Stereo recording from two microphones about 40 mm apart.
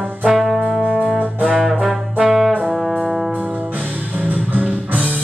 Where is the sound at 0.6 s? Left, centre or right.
Centre.